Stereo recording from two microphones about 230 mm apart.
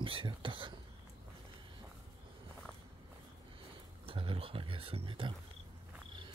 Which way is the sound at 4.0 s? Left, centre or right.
Right.